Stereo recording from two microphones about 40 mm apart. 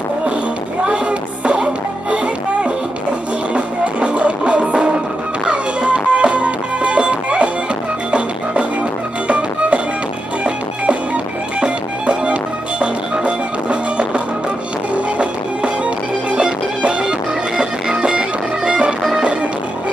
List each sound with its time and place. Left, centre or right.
0.8 s music: right
3.5 s music: right
9.3 s music: right
11.6 s music: right